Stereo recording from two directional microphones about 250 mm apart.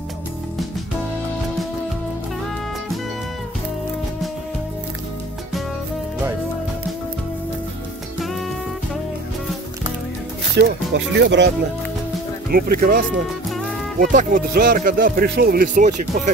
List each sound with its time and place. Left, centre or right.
8.2 s music: centre
10.6 s speech: right